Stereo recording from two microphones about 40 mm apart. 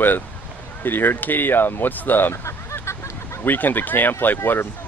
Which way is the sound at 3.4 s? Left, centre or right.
Left.